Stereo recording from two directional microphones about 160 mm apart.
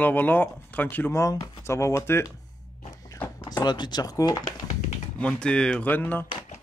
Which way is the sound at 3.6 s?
25° left (ahead or behind).